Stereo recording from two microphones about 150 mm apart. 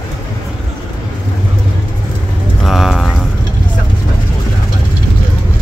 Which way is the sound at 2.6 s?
Centre (ahead or behind).